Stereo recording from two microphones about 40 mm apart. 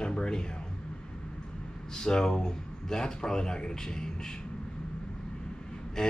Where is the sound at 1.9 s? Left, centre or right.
Centre.